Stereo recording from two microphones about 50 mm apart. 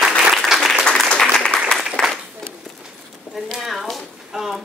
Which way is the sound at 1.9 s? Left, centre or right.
Centre.